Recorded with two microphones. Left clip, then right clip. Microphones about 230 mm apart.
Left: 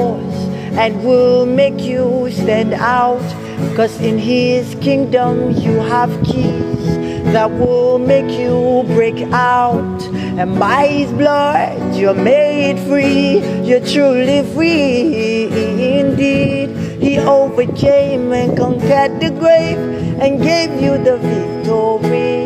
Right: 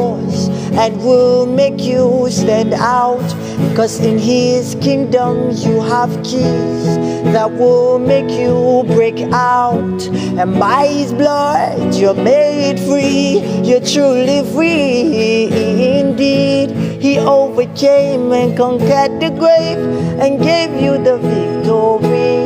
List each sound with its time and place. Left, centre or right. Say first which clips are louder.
0.7 s music: right 1 dB; centre
7.2 s music: right 2 dB; centre